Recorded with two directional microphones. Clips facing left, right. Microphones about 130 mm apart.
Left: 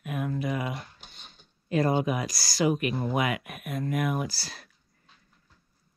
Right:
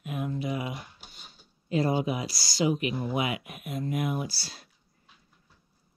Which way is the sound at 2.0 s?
45° left (ahead or behind).